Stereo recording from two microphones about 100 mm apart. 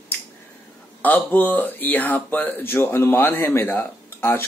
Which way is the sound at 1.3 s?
20° left (ahead or behind).